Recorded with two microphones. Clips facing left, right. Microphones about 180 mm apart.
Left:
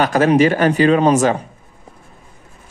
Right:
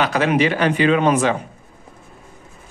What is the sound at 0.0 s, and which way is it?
Speech, 45° left (ahead or behind).